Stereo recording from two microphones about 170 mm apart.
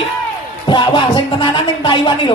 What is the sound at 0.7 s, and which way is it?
Speech, 30° left (ahead or behind).